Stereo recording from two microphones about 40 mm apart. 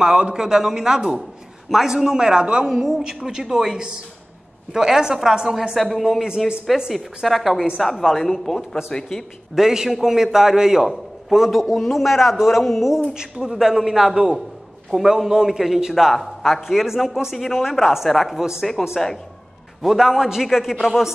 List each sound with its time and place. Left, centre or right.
0.0 s a woman's voice: centre
2.6 s a woman's voice: centre
6.2 s a woman's voice: centre
7.2 s a man's voice: centre
9.6 s a woman's voice: centre
13.1 s a woman's voice: centre
15.9 s a man's voice: centre
18.4 s a woman's voice: centre
19.8 s a woman's voice: centre